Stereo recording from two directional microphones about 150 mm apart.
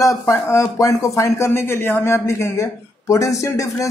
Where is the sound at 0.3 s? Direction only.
20° left (ahead or behind).